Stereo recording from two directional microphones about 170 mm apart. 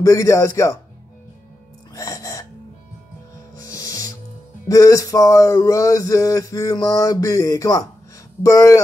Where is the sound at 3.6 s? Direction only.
20° left (ahead or behind).